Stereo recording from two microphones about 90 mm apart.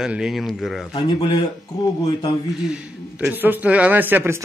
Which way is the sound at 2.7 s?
15° right (ahead or behind).